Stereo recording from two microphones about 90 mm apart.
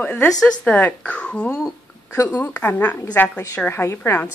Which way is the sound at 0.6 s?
15° left (ahead or behind).